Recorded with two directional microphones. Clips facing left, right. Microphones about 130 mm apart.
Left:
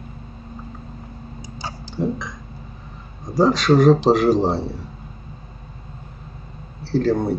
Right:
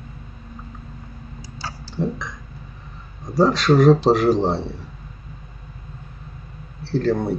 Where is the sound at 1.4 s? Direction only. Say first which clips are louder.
Left 1 dB; 20° left (ahead or behind).